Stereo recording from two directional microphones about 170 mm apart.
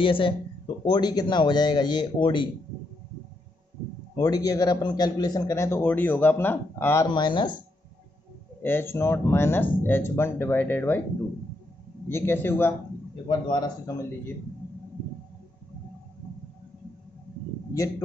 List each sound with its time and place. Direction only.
0.0 s a man's voice: 30° left (ahead or behind)
4.2 s a man's voice: 20° left (ahead or behind)
7.2 s a man's voice: 25° left (ahead or behind)
8.6 s a man's voice: 15° left (ahead or behind)
12.1 s a man's voice: 15° left (ahead or behind)